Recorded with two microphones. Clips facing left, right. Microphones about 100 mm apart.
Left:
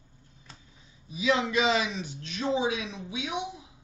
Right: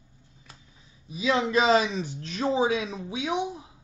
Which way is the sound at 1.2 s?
30° right (ahead or behind).